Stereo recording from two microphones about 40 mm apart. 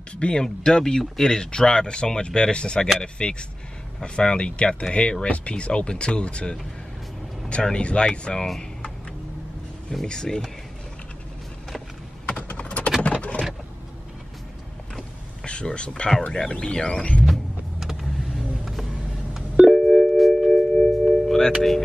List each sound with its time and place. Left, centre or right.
0.2 s speech: left
7.6 s speech: left
10.0 s speech: centre
12.3 s typing: left
13.0 s vehicle: left
15.4 s speech: left
17.2 s power windows: centre
18.3 s vehicle: centre
19.6 s music: centre
20.7 s singing bowl: centre